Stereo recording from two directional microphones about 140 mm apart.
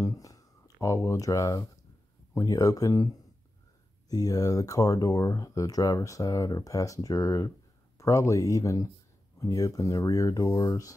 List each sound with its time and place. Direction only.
0.0 s speech: 25° left (ahead or behind)